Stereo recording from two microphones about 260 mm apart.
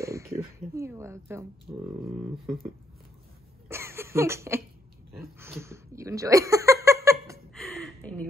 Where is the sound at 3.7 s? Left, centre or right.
Centre.